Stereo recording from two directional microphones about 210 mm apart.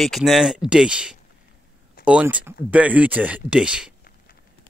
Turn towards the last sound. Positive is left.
turn(degrees=-5)  # may be behind; listen again after turning